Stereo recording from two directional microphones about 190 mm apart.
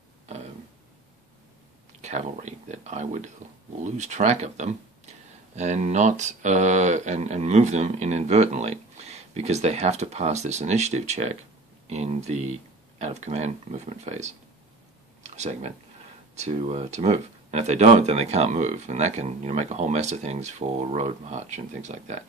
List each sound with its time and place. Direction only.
2.0 s speech: 40° right (ahead or behind)
15.3 s speech: 35° right (ahead or behind)